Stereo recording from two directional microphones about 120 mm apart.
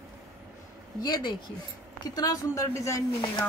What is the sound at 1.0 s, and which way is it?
Speech, 35° left (ahead or behind).